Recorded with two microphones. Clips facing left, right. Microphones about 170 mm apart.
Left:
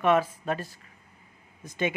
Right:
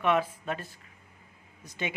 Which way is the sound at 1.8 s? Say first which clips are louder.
Left 6 dB; 50° left (ahead or behind).